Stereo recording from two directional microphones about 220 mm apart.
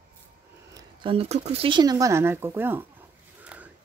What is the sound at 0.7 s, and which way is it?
Speech, 25° right (ahead or behind).